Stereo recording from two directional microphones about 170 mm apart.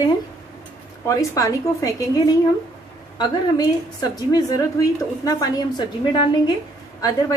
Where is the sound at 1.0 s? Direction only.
20° left (ahead or behind).